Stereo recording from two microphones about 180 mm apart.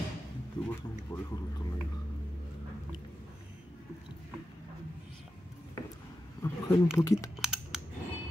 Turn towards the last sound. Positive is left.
turn(degrees=-5)  # may be behind; listen again after turning